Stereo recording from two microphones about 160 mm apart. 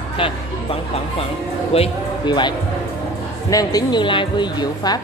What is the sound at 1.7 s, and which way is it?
Speech, 30° left (ahead or behind).